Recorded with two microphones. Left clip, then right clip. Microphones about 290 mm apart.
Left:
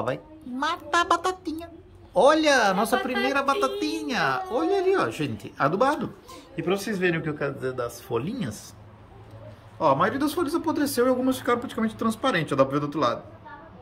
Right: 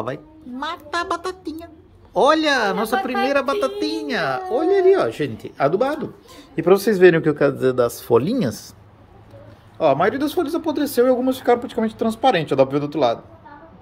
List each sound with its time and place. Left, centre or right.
0.0 s speech: centre
6.5 s speech: centre
9.8 s speech: centre